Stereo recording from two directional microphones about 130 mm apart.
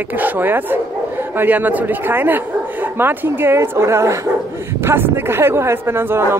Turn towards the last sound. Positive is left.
turn(degrees=-20)  # may be behind; listen again after turning